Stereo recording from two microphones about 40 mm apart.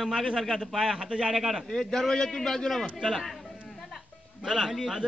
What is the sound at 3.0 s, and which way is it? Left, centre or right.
Speech, centre.